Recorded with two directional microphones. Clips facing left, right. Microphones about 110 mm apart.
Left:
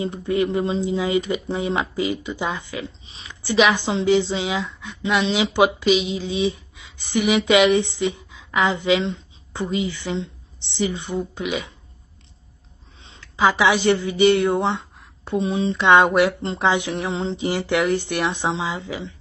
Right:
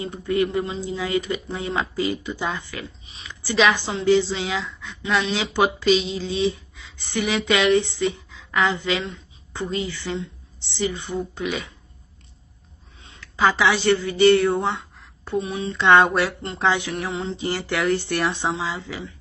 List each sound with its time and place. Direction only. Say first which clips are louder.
0.0 s speech: left 1 dB; 25° left (ahead or behind)
3.1 s a woman's voice: left 1 dB; 25° left (ahead or behind)
13.0 s a sound: right 1 dB; 25° left (ahead or behind)
13.4 s a woman's voice: left 2 dB; 15° left (ahead or behind)
15.8 s speech: left 1 dB; 15° left (ahead or behind)